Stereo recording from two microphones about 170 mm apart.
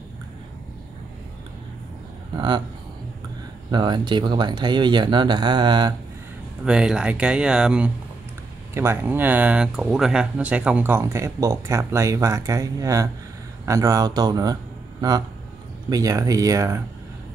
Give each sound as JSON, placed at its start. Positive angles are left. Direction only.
{"t": 2.3, "sound": "speech", "side_deg": -25}
{"t": 3.7, "sound": "speech", "side_deg": -25}
{"t": 6.6, "sound": "speech", "side_deg": -5}